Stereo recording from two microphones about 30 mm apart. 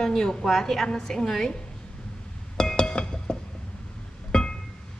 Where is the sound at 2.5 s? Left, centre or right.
Left.